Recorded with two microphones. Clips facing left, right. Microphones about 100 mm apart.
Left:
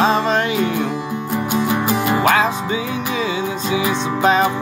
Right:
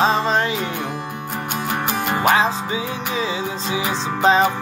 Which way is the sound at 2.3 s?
30° right (ahead or behind).